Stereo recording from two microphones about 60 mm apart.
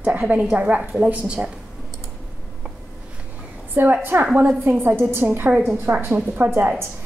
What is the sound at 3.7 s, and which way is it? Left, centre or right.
A woman's voice, right.